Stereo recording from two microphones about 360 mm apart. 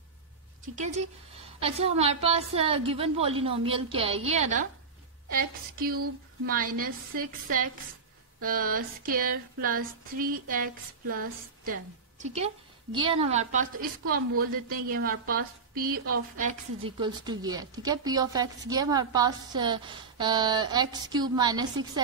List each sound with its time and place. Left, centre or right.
0.7 s a woman's voice: centre
5.3 s a sound: right
14.4 s a woman's voice: right